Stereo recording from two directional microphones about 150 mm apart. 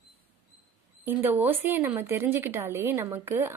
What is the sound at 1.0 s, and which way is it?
Speech, 15° right (ahead or behind).